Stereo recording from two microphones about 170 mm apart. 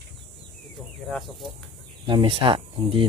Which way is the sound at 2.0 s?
30° right (ahead or behind).